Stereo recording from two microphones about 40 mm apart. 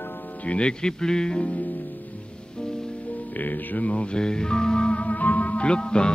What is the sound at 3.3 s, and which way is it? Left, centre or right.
Speech, left.